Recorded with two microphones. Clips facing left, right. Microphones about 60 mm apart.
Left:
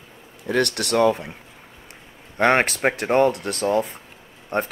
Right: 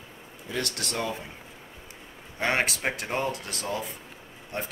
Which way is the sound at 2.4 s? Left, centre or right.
Left.